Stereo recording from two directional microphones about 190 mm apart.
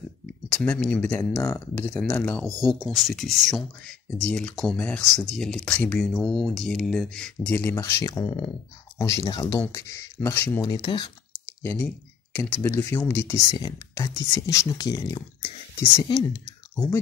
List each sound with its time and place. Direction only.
0.5 s speech: 5° left (ahead or behind)
1.4 s speech: 15° left (ahead or behind)
1.9 s speech: 5° left (ahead or behind)
10.6 s speech: 25° left (ahead or behind)
12.4 s speech: 10° left (ahead or behind)
16.7 s speech: 5° left (ahead or behind)